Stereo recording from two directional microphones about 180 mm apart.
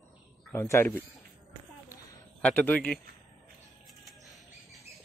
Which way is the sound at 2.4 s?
10° left (ahead or behind).